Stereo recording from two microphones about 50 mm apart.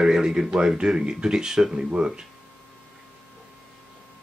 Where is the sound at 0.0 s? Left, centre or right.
Centre.